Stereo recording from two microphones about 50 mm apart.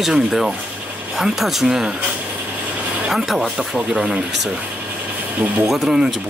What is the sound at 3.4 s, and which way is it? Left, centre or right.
Speech, centre.